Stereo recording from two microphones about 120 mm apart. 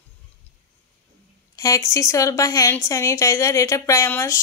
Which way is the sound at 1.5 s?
25° left (ahead or behind).